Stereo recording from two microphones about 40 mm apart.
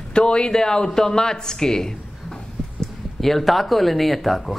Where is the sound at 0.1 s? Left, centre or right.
Left.